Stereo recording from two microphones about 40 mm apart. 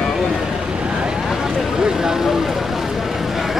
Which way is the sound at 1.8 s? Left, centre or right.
Centre.